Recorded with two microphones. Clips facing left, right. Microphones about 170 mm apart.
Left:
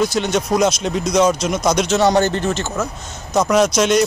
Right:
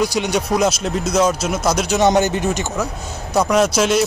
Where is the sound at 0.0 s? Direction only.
10° right (ahead or behind).